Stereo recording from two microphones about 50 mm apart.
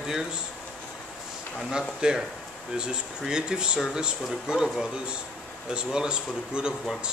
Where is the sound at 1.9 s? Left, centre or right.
Centre.